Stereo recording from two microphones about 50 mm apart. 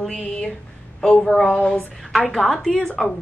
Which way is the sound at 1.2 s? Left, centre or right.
Centre.